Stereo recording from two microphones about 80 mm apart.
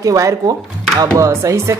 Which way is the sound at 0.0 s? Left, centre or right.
Right.